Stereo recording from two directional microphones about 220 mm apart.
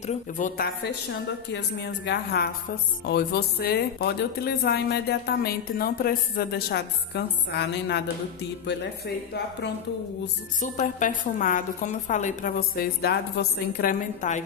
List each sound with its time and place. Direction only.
0.0 s a woman's voice: 30° left (ahead or behind)
1.5 s speech: 50° left (ahead or behind)
10.6 s a woman's voice: 35° left (ahead or behind)